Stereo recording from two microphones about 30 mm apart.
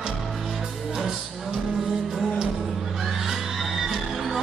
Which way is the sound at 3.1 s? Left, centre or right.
Centre.